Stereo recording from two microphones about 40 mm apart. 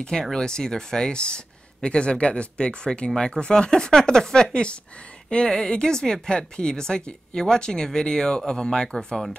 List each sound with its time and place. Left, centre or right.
0.2 s speech: centre